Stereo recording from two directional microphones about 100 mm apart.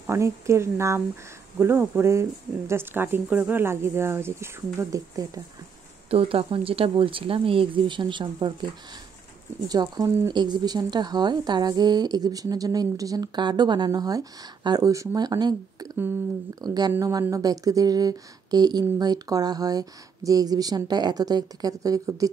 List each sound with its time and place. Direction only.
0.0 s speech: 25° right (ahead or behind)
4.7 s speech: 35° right (ahead or behind)
6.0 s speech: 75° right (ahead or behind); by 8.6 s 50° right (ahead or behind)
9.7 s speech: 40° right (ahead or behind)
10.3 s a woman's voice: 45° right (ahead or behind)